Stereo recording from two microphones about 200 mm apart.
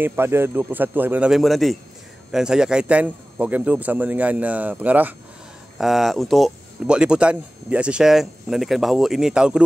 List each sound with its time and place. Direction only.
0.0 s a man's voice: 10° right (ahead or behind)